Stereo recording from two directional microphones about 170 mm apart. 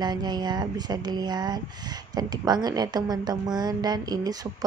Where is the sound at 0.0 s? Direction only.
25° right (ahead or behind).